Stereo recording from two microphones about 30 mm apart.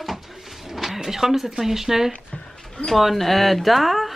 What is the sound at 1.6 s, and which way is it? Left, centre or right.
Speech, centre.